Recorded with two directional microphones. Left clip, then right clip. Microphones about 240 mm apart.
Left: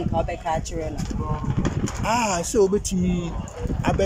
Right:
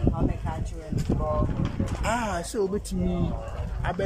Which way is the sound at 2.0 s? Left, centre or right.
Centre.